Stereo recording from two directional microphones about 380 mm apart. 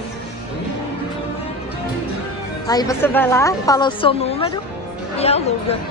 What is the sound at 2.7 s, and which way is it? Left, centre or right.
A woman's voice, centre.